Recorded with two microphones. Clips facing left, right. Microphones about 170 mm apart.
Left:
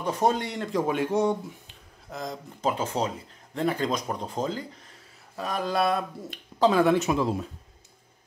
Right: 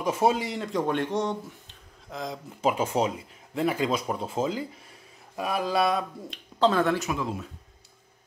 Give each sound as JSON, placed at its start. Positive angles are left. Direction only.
{"t": 0.0, "sound": "speech", "side_deg": -5}
{"t": 7.0, "sound": "speech", "side_deg": 30}